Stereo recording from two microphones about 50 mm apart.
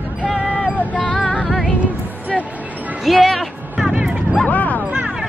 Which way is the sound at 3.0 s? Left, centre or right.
Centre.